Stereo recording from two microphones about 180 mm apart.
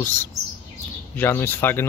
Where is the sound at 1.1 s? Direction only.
10° left (ahead or behind).